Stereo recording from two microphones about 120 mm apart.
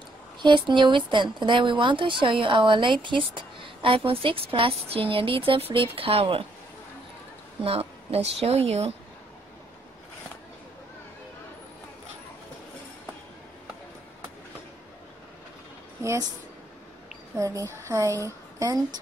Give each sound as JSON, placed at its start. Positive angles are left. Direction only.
{"t": 0.4, "sound": "a woman's voice", "side_deg": -40}
{"t": 7.6, "sound": "a woman's voice", "side_deg": -55}
{"t": 16.0, "sound": "a woman's voice", "side_deg": -25}
{"t": 17.4, "sound": "a sound", "side_deg": -25}
{"t": 17.8, "sound": "a woman's voice", "side_deg": -25}